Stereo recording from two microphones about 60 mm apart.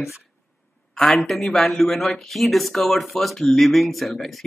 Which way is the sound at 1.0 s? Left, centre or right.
Centre.